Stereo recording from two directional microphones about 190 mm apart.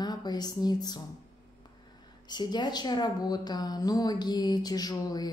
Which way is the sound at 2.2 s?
20° left (ahead or behind).